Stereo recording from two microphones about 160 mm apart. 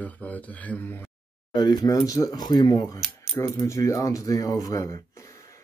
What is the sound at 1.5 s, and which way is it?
Speech, 25° left (ahead or behind).